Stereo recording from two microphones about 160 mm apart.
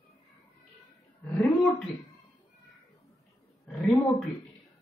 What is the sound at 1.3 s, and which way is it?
Speech, 10° left (ahead or behind).